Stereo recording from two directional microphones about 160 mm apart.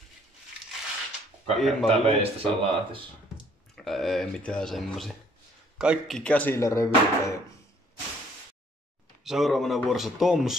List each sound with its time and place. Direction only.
1.6 s speech: centre (ahead or behind)
1.9 s speech: 35° right (ahead or behind)
3.7 s speech: centre (ahead or behind)
6.6 s speech: 20° left (ahead or behind)
9.2 s speech: centre (ahead or behind)